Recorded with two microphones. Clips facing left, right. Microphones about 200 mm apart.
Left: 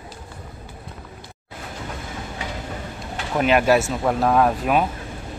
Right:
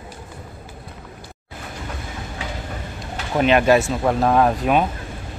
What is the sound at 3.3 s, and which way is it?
Speech, 5° left (ahead or behind).